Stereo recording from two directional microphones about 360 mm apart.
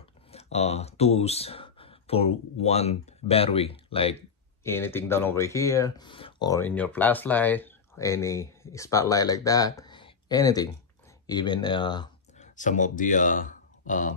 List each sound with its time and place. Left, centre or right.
0.3 s speech: centre